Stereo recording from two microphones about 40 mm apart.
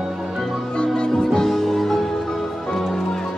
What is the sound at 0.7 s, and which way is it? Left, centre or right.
Music, left.